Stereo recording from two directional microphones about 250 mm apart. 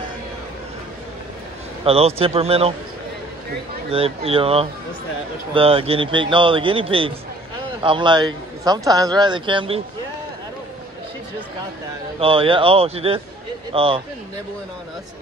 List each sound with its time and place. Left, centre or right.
1.9 s a man's voice: right
3.9 s a man's voice: right
12.2 s a man's voice: right